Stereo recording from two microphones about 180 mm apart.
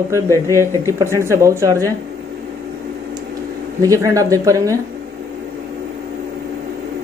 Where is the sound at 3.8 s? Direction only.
20° right (ahead or behind).